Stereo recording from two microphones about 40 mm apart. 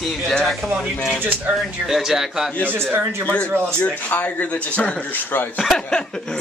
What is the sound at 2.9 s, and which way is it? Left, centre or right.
Speech, right.